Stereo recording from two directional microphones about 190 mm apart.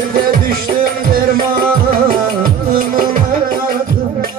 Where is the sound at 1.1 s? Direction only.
50° right (ahead or behind).